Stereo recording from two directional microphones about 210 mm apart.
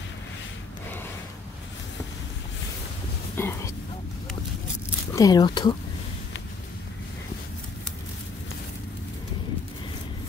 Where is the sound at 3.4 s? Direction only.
10° left (ahead or behind).